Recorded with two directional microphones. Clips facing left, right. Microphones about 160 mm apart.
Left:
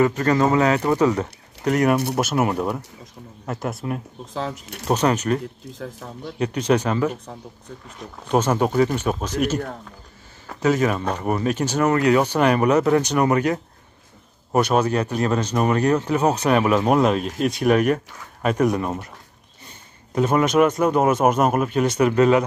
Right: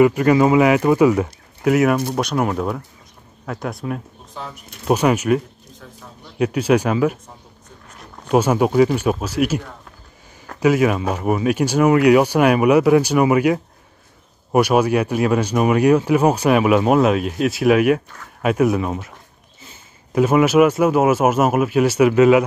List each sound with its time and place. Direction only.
0.0 s speech: 10° right (ahead or behind)
4.3 s speech: 90° left; by 4.8 s 65° left (ahead or behind)
4.8 s speech: 10° right (ahead or behind)
5.8 s speech: 85° left
6.3 s speech: 10° right (ahead or behind)
8.3 s speech: 10° right (ahead or behind)
10.6 s speech: 10° right (ahead or behind)
20.2 s speech: 5° right (ahead or behind)